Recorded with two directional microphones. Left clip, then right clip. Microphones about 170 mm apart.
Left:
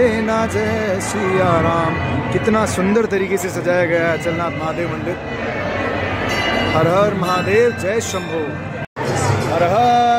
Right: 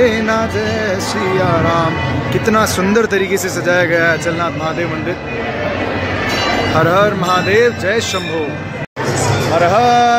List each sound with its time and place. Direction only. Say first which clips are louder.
0.0 s music: right 3 dB; 15° left (ahead or behind)
1.4 s speech: right 1 dB; 15° left (ahead or behind)
6.8 s speech: right 4 dB; 10° left (ahead or behind)
9.6 s speech: right 3 dB; 5° right (ahead or behind)